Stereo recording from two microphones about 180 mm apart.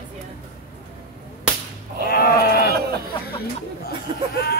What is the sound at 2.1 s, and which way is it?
Sheep, 60° left (ahead or behind).